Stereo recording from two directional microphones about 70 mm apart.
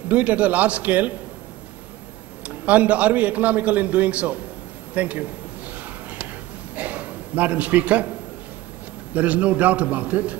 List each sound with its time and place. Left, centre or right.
0.1 s a man's voice: right
2.4 s a man's voice: right
6.7 s a sound: right
9.1 s a man's voice: right